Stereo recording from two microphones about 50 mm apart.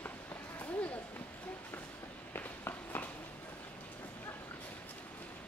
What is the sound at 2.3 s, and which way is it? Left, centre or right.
Walk, left.